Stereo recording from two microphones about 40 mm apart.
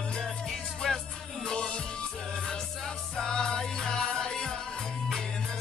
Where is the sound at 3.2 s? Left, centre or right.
Left.